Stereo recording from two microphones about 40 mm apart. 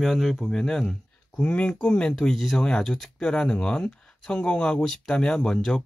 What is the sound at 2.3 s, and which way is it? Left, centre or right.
Speech, centre.